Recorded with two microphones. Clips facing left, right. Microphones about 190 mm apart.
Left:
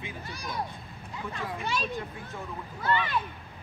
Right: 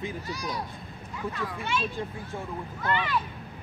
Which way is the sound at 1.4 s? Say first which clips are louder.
Even; 35° left (ahead or behind).